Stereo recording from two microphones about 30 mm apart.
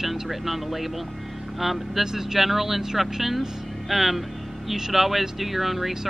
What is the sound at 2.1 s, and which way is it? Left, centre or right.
Speech, centre.